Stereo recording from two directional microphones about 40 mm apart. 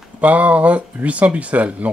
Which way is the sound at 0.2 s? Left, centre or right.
Right.